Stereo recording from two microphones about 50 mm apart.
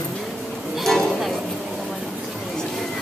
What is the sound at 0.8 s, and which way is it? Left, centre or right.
Music, centre.